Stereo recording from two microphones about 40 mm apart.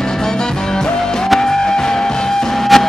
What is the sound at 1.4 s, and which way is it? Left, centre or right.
Music, centre.